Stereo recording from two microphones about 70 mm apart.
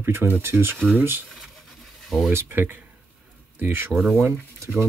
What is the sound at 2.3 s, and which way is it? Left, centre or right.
Speech, right.